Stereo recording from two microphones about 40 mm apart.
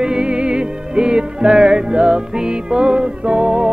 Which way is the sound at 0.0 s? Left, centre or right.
Right.